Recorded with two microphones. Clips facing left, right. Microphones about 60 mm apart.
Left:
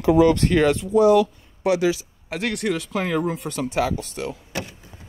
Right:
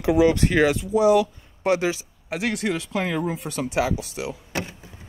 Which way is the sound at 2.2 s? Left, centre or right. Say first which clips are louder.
Left 1 dB; centre.